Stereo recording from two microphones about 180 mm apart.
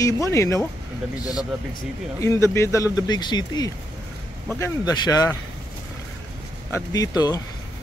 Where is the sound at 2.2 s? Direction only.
15° left (ahead or behind).